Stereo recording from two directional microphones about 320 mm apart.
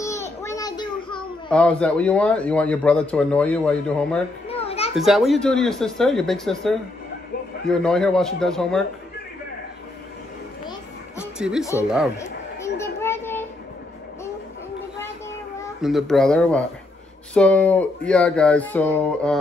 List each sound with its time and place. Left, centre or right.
0.0 s a child's voice: centre
4.5 s children playing: centre
4.9 s speech: centre
11.3 s speech: centre
12.2 s children playing: centre
15.8 s speech: centre